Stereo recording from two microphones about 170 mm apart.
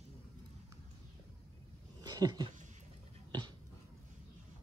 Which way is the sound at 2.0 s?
20° right (ahead or behind).